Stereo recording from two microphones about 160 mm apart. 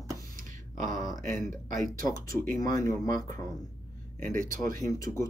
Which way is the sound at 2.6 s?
20° left (ahead or behind).